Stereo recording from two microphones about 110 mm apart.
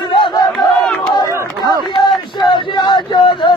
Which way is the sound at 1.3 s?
30° right (ahead or behind).